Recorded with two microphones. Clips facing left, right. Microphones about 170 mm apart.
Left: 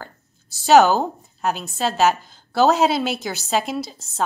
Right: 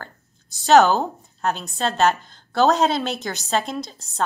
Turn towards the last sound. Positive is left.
turn(degrees=5)  # may be behind; listen again after turning